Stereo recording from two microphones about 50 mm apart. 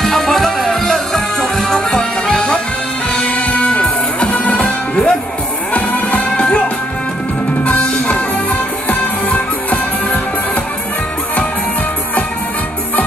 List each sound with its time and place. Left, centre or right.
0.0 s music: centre; by 6.6 s left
7.6 s music: left